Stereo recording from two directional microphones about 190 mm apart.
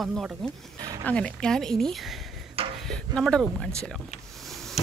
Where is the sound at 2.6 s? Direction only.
30° right (ahead or behind).